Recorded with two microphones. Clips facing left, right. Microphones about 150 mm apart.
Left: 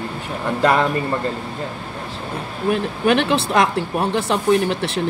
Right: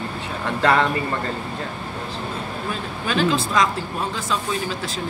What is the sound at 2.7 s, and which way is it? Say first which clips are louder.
Speech: left 8 dB; 65° left (ahead or behind).